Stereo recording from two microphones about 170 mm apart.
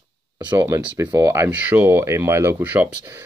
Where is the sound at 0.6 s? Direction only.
15° right (ahead or behind).